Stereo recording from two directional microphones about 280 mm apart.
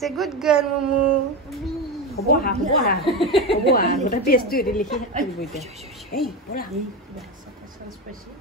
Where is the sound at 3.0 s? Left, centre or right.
Centre.